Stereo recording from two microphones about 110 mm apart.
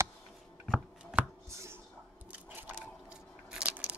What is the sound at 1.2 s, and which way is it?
Chopping, 10° right (ahead or behind).